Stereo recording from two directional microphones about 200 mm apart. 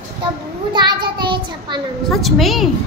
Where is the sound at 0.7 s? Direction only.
20° right (ahead or behind).